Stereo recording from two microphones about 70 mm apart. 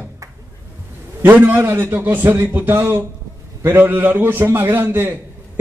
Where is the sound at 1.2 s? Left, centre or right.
Right.